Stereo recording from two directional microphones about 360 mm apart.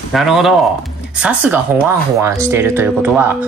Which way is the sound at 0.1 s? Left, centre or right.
Centre.